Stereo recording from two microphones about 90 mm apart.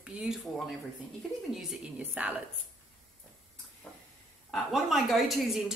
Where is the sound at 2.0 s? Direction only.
15° right (ahead or behind).